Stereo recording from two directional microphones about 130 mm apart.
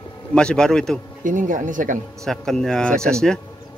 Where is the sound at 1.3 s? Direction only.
85° right.